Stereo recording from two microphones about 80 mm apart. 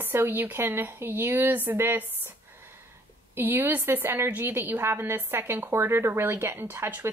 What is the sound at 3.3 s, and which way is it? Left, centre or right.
A woman's voice, right.